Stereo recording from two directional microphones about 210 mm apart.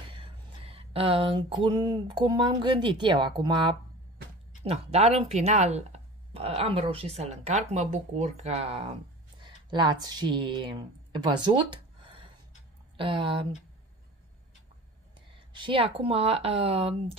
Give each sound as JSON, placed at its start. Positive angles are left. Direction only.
{"t": 0.1, "sound": "a sound", "side_deg": -25}
{"t": 1.6, "sound": "speech", "side_deg": -20}
{"t": 15.5, "sound": "speech", "side_deg": -25}